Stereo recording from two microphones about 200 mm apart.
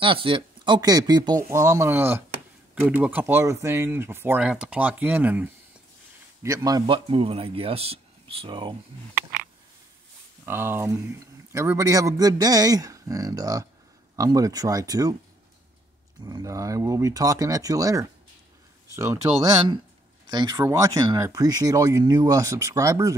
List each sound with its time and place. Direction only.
0.0 s a man's voice: 25° right (ahead or behind)
10.4 s speech: 10° right (ahead or behind)
16.3 s speech: 20° right (ahead or behind)
20.2 s speech: 20° right (ahead or behind)